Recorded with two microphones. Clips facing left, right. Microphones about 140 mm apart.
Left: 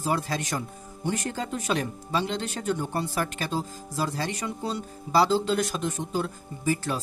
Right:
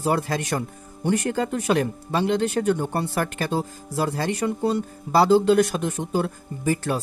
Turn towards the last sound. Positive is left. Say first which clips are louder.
# right 3 dB
turn(degrees=-55)  # may be behind; listen again after turning